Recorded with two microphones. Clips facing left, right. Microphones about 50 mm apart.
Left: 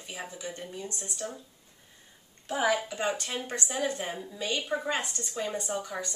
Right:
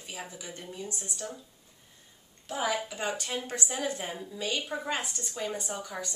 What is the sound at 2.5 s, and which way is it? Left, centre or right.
A woman's voice, centre.